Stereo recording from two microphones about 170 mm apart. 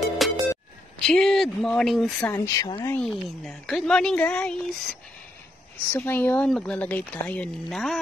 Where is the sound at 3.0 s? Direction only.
Centre (ahead or behind).